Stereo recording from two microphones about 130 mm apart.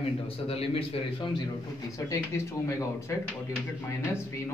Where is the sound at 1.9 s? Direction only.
25° left (ahead or behind).